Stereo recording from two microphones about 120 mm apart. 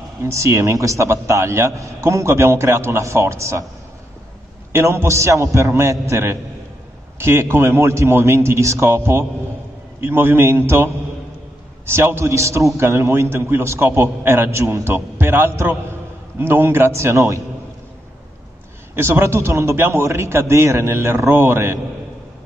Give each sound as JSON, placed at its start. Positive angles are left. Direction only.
{"t": 0.2, "sound": "a man's voice", "side_deg": -25}
{"t": 4.7, "sound": "a man's voice", "side_deg": -20}
{"t": 18.9, "sound": "a man's voice", "side_deg": -20}